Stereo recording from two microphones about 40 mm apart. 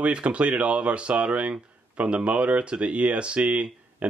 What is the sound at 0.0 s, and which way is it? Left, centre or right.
Speech, right.